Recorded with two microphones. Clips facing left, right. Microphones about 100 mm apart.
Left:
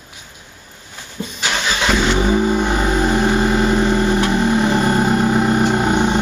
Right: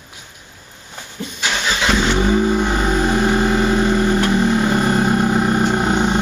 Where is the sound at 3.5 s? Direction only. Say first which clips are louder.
Even; 15° left (ahead or behind).